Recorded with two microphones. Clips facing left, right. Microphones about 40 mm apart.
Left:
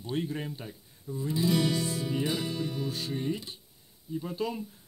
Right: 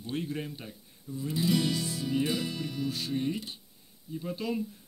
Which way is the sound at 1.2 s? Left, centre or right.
Left.